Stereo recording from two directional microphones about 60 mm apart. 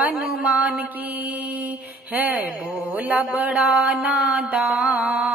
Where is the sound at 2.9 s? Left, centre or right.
Right.